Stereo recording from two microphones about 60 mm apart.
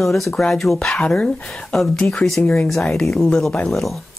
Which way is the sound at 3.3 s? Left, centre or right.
Centre.